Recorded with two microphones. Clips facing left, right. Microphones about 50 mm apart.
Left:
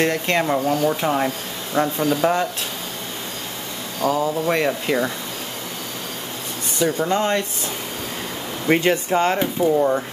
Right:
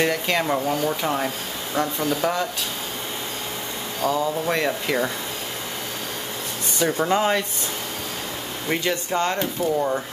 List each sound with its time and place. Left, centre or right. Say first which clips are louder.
0.0 s speech: left 2 dB; centre
4.0 s speech: left 3 dB; centre
6.9 s speech: even; centre
8.6 s speech: left 7 dB; left
9.1 s speech: left 4 dB; centre